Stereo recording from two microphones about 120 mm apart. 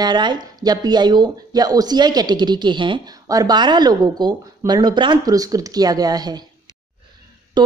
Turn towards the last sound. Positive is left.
turn(degrees=-35)  # may be behind; listen again after turning